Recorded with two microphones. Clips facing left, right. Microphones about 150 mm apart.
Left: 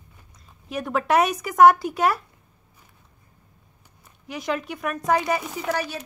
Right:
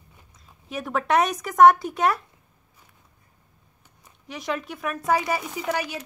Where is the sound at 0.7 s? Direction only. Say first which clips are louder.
Left 1 dB; centre (ahead or behind).